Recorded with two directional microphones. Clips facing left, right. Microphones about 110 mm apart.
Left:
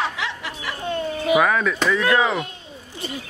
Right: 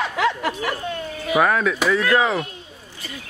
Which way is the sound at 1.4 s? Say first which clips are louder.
Right 1 dB; 5° right (ahead or behind).